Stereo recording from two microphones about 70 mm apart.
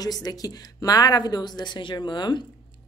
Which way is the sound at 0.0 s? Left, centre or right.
Left.